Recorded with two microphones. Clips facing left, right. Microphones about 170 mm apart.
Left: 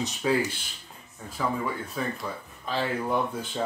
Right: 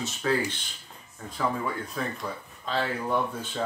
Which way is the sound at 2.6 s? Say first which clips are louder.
Left 1 dB; 10° left (ahead or behind).